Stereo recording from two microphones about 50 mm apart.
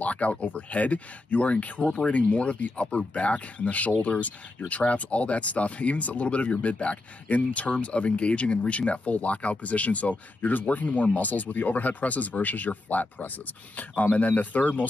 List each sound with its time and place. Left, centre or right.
0.0 s speech: left